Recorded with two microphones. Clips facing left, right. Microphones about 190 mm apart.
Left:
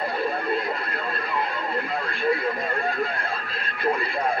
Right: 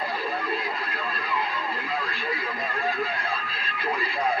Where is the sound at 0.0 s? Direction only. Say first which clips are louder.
Left 4 dB; 50° left (ahead or behind).